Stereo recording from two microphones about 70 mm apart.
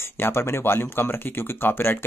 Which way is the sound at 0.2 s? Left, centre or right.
Left.